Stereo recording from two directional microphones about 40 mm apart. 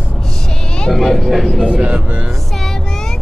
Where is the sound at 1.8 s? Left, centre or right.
Right.